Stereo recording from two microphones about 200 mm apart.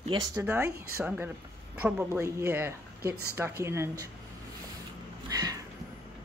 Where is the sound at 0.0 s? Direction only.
20° right (ahead or behind).